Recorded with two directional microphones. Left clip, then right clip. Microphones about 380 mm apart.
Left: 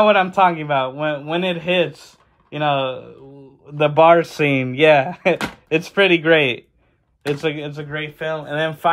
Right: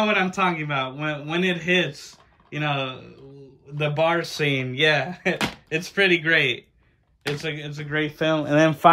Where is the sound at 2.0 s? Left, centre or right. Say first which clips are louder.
Right 2 dB; centre.